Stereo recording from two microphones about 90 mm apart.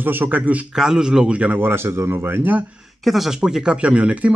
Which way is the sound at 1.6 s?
25° right (ahead or behind).